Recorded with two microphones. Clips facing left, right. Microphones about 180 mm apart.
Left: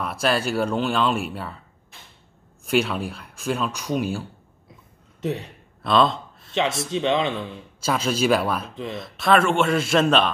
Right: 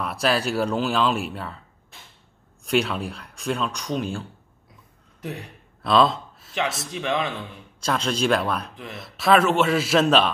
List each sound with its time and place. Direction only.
0.0 s speech: centre (ahead or behind)
2.6 s speech: centre (ahead or behind)
5.2 s speech: 20° left (ahead or behind)
5.8 s a sound: centre (ahead or behind)
6.9 s speech: 25° left (ahead or behind)
7.3 s speech: 5° left (ahead or behind)
8.7 s speech: 20° left (ahead or behind)
9.0 s speech: centre (ahead or behind)